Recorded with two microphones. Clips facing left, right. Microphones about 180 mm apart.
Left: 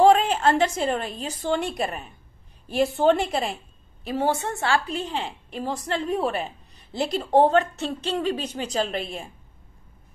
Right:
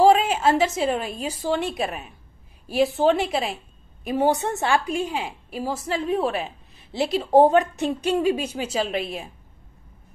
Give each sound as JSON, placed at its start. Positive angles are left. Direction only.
{"t": 0.0, "sound": "a woman's voice", "side_deg": -5}
{"t": 4.0, "sound": "a woman's voice", "side_deg": -15}